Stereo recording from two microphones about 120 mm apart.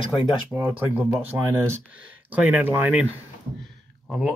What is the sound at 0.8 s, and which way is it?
Speech, 15° right (ahead or behind).